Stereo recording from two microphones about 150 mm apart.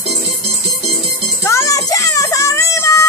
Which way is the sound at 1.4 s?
20° left (ahead or behind).